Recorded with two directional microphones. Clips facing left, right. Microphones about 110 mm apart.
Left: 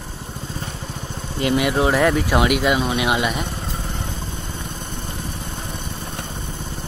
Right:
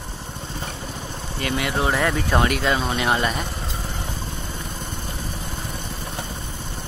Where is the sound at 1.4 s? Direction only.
20° left (ahead or behind).